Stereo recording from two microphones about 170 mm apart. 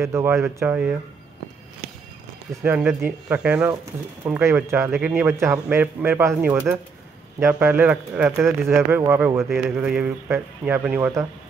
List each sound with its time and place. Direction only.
0.0 s a man's voice: 15° right (ahead or behind)
2.5 s a man's voice: 10° right (ahead or behind)